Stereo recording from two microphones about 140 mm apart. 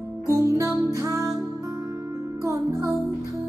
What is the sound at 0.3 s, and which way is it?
Music, 20° right (ahead or behind).